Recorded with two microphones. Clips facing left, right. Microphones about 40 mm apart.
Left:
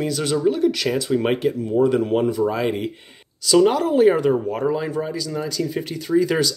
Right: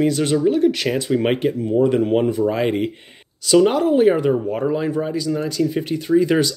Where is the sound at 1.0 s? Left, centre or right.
Centre.